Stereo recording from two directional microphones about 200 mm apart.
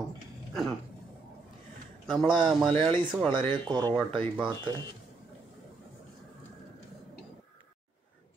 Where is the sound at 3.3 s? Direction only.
10° left (ahead or behind).